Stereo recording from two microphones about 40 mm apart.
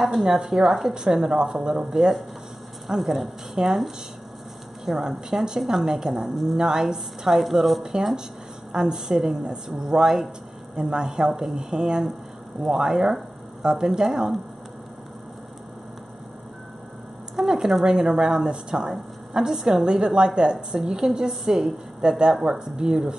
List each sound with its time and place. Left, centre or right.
0.0 s a woman's voice: centre
0.7 s a woman's voice: centre
0.9 s a woman's voice: centre
4.8 s a woman's voice: centre
7.8 s a woman's voice: centre
17.4 s a woman's voice: centre